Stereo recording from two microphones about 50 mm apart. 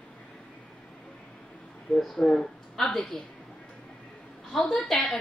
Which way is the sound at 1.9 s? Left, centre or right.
Left.